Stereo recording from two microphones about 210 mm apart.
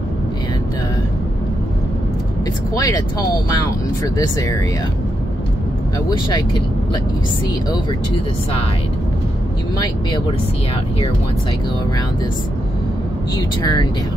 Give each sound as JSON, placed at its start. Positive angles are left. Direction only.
{"t": 2.7, "sound": "speech", "side_deg": 15}
{"t": 9.8, "sound": "speech", "side_deg": 25}